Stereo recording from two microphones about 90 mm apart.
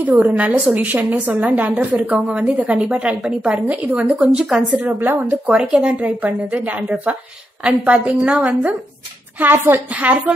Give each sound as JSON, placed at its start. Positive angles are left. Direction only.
{"t": 0.0, "sound": "a woman's voice", "side_deg": -15}